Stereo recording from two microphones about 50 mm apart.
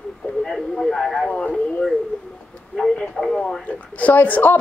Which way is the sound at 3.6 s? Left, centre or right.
Left.